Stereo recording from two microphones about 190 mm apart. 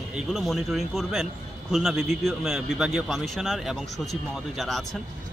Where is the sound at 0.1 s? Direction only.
Centre (ahead or behind).